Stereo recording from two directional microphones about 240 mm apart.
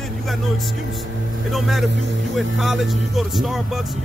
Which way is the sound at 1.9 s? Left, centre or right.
Right.